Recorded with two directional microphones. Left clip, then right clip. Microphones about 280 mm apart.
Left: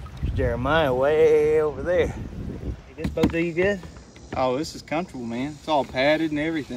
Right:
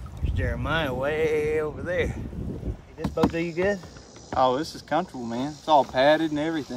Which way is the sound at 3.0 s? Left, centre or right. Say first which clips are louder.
Left 2 dB; centre.